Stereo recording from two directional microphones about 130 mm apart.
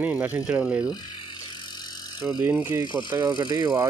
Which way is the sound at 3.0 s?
30° right (ahead or behind).